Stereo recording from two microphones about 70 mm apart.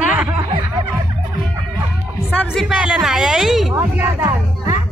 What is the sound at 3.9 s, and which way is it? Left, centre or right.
Speech, right.